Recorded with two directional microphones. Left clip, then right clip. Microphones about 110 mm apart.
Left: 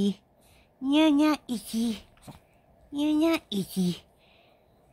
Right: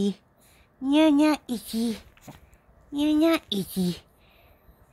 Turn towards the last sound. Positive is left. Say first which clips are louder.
# right 2 dB
turn(degrees=-35)  # may be behind; listen again after turning